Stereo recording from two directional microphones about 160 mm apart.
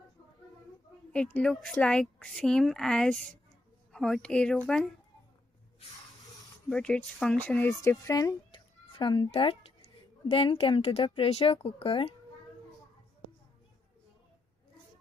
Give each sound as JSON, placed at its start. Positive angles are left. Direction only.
{"t": 1.1, "sound": "speech", "side_deg": 5}
{"t": 6.7, "sound": "speech", "side_deg": 5}